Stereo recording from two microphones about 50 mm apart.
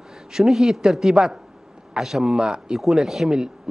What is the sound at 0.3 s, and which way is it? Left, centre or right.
A man's voice, centre.